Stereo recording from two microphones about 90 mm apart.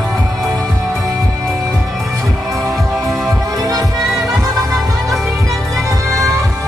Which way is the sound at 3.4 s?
45° right (ahead or behind).